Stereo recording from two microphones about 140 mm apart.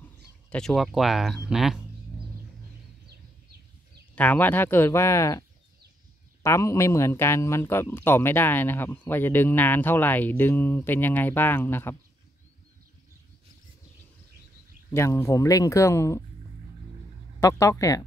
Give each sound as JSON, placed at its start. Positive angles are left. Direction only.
{"t": 0.0, "sound": "speech", "side_deg": 5}
{"t": 4.1, "sound": "speech", "side_deg": 10}
{"t": 6.4, "sound": "speech", "side_deg": 20}
{"t": 15.0, "sound": "speech", "side_deg": 20}
{"t": 17.4, "sound": "speech", "side_deg": 20}